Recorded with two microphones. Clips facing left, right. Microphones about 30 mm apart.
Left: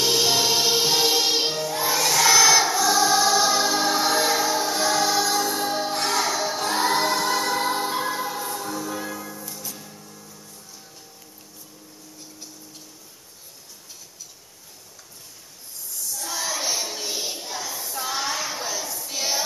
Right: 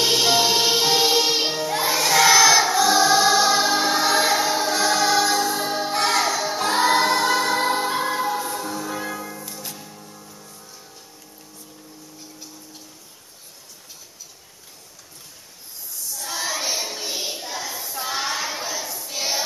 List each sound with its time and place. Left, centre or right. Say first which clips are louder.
0.0 s music: right 2 dB; centre
1.9 s choir: right 3 dB; centre
2.7 s music: right 3 dB; right
5.4 s music: right 1 dB; centre
7.0 s music: right 3 dB; centre
16.1 s child singing: right 1 dB; centre